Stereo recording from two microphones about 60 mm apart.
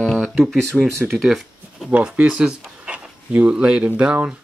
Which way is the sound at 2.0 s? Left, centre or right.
Centre.